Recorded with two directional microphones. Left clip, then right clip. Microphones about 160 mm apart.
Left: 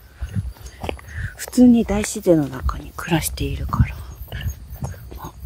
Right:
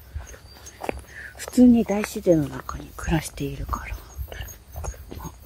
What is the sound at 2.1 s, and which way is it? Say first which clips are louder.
A woman's voice: left 4 dB; 25° left (ahead or behind).